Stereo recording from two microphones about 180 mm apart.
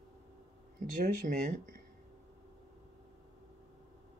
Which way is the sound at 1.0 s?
50° right (ahead or behind).